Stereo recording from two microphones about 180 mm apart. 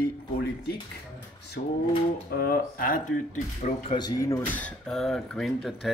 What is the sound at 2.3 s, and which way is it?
Speech, 55° left (ahead or behind).